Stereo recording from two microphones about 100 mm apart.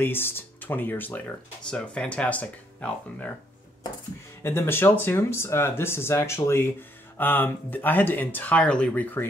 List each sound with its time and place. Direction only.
0.0 s speech: 20° left (ahead or behind)
4.4 s speech: 25° left (ahead or behind)